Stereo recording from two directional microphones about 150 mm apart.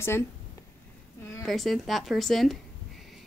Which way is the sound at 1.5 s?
Centre (ahead or behind).